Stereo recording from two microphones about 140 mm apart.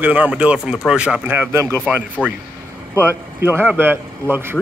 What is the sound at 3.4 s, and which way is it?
A man's voice, 15° right (ahead or behind).